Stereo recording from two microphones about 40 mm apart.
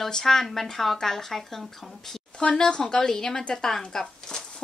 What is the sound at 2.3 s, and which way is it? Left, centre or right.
A woman's voice, left.